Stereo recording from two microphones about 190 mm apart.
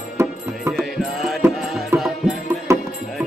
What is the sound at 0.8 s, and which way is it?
Music, centre (ahead or behind).